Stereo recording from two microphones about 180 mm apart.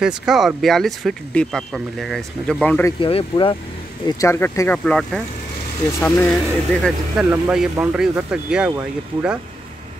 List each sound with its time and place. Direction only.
0.0 s speech: 5° right (ahead or behind)
3.0 s speech: 30° left (ahead or behind)
4.2 s speech: 15° left (ahead or behind); by 9.4 s 10° right (ahead or behind)